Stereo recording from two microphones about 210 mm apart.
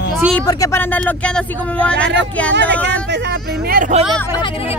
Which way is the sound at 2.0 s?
55° right (ahead or behind).